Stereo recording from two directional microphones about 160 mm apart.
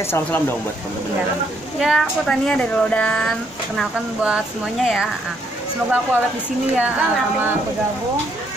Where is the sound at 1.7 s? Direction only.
Centre (ahead or behind).